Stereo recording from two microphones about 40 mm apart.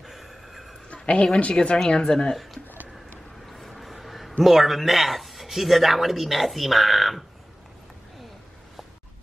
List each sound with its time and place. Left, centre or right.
0.0 s vehicle: centre
0.8 s a sound: left
1.5 s speech: left
3.4 s a man's voice: centre